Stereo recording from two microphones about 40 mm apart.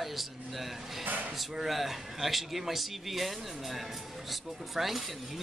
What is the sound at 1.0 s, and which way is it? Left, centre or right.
Speech, right.